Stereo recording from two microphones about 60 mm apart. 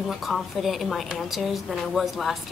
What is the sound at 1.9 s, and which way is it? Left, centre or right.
Speech, centre.